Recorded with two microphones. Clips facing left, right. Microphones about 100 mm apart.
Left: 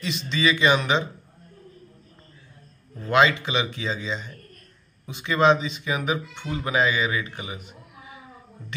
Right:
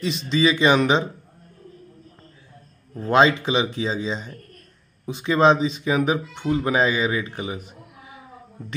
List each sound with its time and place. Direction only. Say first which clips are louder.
0.0 s speech: right 4 dB; 35° right (ahead or behind)
3.0 s speech: right 3 dB; 35° right (ahead or behind)